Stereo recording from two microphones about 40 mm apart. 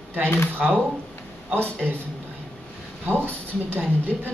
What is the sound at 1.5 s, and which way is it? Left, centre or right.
Speech, right.